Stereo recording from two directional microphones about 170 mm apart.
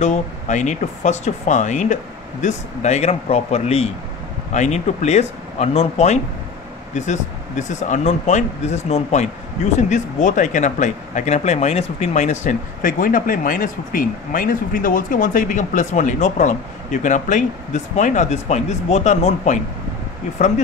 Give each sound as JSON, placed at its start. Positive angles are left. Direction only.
{"t": 0.0, "sound": "speech", "side_deg": 45}